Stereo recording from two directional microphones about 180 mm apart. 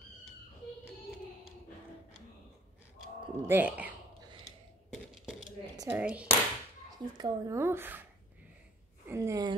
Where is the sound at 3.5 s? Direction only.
10° right (ahead or behind).